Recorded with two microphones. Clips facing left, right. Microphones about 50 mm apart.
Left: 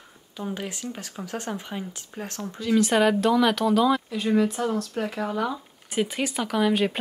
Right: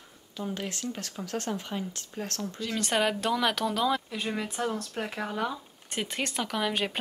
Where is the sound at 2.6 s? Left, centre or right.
Centre.